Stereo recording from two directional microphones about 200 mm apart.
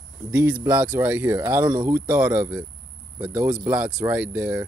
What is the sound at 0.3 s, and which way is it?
Speech, 10° right (ahead or behind).